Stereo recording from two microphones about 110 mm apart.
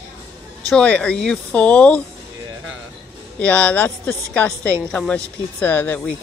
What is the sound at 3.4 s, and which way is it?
A woman's voice, 15° left (ahead or behind).